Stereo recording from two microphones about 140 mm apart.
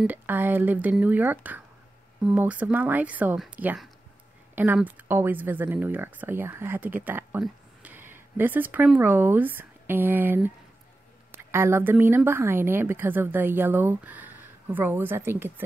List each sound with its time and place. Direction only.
0.0 s speech: 15° right (ahead or behind)